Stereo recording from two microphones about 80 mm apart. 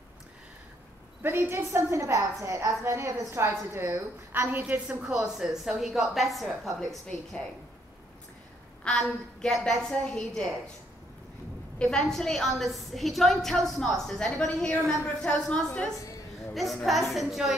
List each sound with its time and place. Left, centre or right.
1.2 s a woman's voice: right
5.0 s a woman's voice: centre
8.8 s a woman's voice: centre
11.8 s a woman's voice: centre
16.5 s a woman's voice: centre